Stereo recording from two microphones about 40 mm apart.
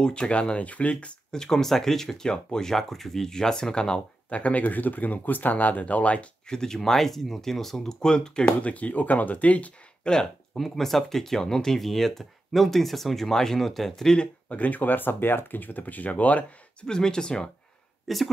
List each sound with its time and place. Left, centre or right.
0.0 s speech: left
0.6 s speech: left
1.3 s speech: centre
4.3 s speech: left
6.4 s speech: centre
8.5 s speech: left
10.0 s speech: centre
10.6 s speech: centre
14.1 s speech: left
14.6 s speech: left
16.8 s speech: centre
18.0 s speech: centre